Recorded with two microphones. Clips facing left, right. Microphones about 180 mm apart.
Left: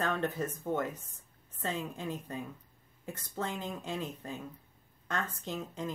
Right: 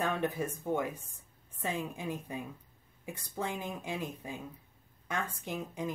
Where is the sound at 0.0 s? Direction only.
10° right (ahead or behind).